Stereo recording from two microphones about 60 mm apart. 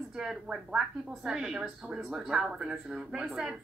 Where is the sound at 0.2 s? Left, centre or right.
Centre.